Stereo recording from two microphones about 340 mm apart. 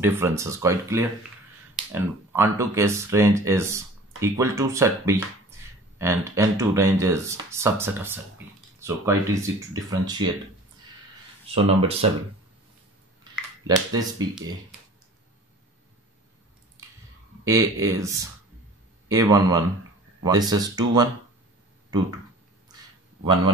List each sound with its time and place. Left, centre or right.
0.0 s speech: centre
11.5 s speech: centre
13.7 s speech: centre
17.5 s speech: centre